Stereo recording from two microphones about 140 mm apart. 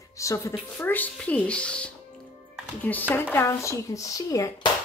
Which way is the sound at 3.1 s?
15° left (ahead or behind).